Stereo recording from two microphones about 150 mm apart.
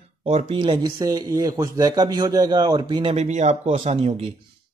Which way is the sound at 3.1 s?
50° right (ahead or behind).